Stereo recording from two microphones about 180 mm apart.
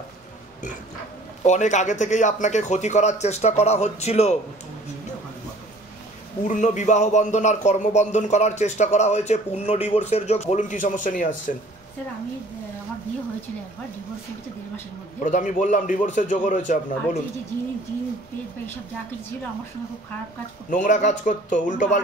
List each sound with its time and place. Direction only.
1.4 s a man's voice: 40° left (ahead or behind)
6.4 s a man's voice: 45° left (ahead or behind)
15.2 s a man's voice: 45° left (ahead or behind)
20.7 s a man's voice: 45° left (ahead or behind)